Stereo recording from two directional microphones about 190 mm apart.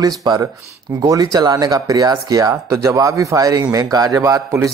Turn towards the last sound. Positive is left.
turn(degrees=-15)  # may be behind; listen again after turning